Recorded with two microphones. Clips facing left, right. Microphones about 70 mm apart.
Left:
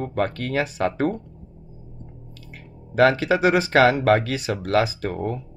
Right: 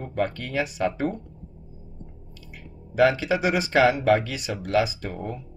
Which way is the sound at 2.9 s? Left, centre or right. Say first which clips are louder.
Left 3 dB; left.